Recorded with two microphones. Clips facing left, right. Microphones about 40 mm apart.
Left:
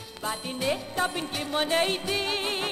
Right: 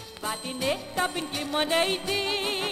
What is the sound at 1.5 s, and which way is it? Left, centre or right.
Music, right.